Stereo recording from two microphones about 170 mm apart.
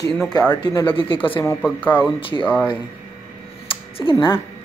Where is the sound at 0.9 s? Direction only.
30° left (ahead or behind).